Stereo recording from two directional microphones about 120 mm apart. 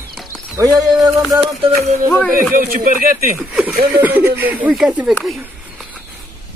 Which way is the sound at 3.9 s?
15° right (ahead or behind).